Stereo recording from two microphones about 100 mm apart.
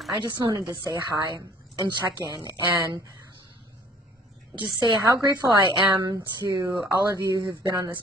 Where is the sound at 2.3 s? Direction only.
40° right (ahead or behind).